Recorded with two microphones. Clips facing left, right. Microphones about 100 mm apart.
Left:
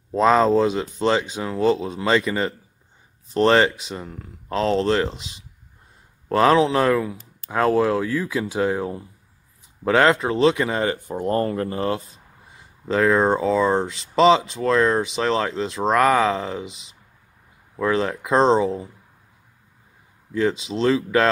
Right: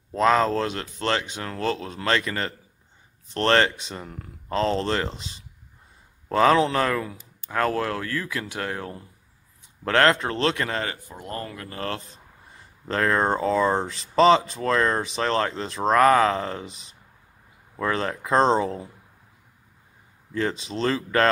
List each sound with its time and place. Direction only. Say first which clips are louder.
0.1 s speech: left 4 dB; 15° left (ahead or behind)
6.3 s speech: left 2 dB; 5° left (ahead or behind); by 11.1 s 25° left (ahead or behind)
11.1 s speech: left 12 dB; 40° left (ahead or behind)
12.1 s speech: even; 5° left (ahead or behind)
20.3 s speech: left 5 dB; centre (ahead or behind)